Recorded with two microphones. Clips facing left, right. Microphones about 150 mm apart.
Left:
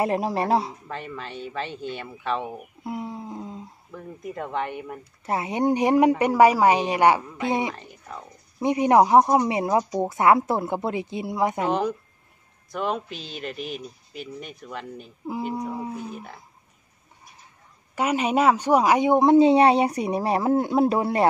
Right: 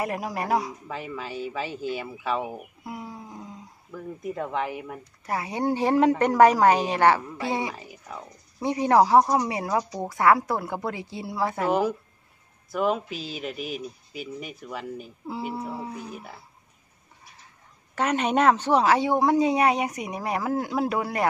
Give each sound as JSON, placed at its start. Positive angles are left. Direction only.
{"t": 0.0, "sound": "a woman's voice", "side_deg": 30}
{"t": 0.8, "sound": "speech", "side_deg": -5}
{"t": 2.8, "sound": "a sound", "side_deg": 25}
{"t": 3.9, "sound": "speech", "side_deg": 0}
{"t": 5.2, "sound": "a woman's voice", "side_deg": 25}
{"t": 7.7, "sound": "speech", "side_deg": -5}
{"t": 8.5, "sound": "a woman's voice", "side_deg": 15}
{"t": 12.7, "sound": "speech", "side_deg": -5}
{"t": 15.5, "sound": "a woman's voice", "side_deg": 15}
{"t": 15.9, "sound": "speech", "side_deg": 0}
{"t": 17.9, "sound": "a woman's voice", "side_deg": 10}